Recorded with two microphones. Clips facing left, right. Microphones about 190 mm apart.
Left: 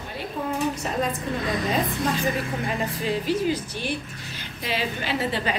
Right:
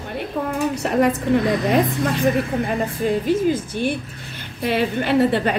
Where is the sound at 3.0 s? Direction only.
50° right (ahead or behind).